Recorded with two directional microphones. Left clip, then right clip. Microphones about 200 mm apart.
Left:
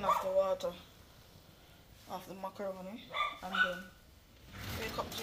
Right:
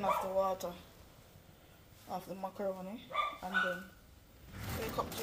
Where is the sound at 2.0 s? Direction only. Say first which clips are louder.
Right 1 dB; 10° right (ahead or behind).